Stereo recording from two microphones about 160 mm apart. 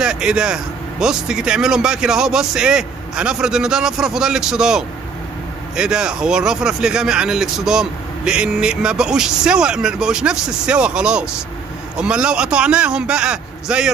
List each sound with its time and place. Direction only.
0.0 s speech: 5° right (ahead or behind)